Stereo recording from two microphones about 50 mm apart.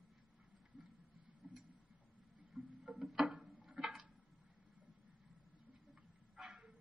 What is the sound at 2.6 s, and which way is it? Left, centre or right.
Music, right.